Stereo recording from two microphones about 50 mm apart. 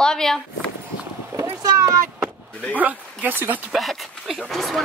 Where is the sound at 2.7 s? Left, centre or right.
Right.